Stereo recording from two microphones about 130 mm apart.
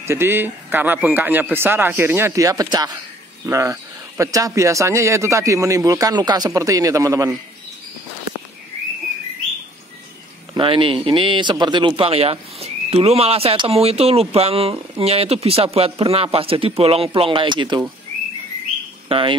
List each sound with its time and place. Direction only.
0.0 s speech: 20° right (ahead or behind)
10.5 s speech: 40° right (ahead or behind)
19.0 s speech: 45° right (ahead or behind)